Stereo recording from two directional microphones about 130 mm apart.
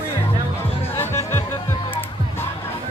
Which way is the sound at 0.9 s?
20° left (ahead or behind).